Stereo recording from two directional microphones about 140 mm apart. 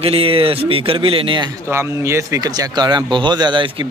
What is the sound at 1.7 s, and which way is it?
Speech, 20° right (ahead or behind).